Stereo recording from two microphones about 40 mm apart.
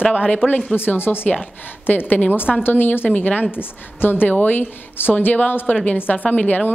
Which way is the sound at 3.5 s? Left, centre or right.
Left.